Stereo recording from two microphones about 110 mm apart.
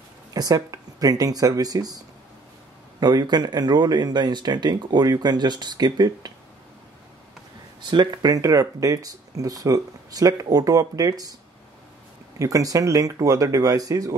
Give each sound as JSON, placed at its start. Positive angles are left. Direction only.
{"t": 0.3, "sound": "speech", "side_deg": -35}
{"t": 3.0, "sound": "speech", "side_deg": -40}
{"t": 7.9, "sound": "speech", "side_deg": -40}
{"t": 12.4, "sound": "speech", "side_deg": -30}